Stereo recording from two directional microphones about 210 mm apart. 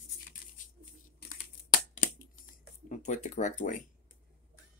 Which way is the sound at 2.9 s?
35° left (ahead or behind).